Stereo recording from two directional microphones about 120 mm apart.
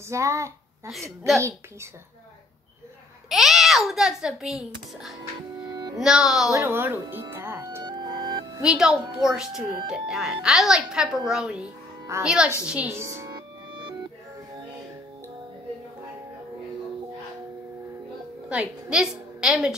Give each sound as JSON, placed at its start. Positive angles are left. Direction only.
{"t": 0.1, "sound": "a woman's voice", "side_deg": -25}
{"t": 3.3, "sound": "speech", "side_deg": 0}
{"t": 5.7, "sound": "music", "side_deg": -35}
{"t": 5.9, "sound": "speech", "side_deg": -5}
{"t": 6.5, "sound": "speech", "side_deg": -20}
{"t": 7.8, "sound": "music", "side_deg": -35}
{"t": 8.6, "sound": "a woman's voice", "side_deg": -5}
{"t": 12.9, "sound": "music", "side_deg": -25}
{"t": 18.5, "sound": "a woman's voice", "side_deg": -10}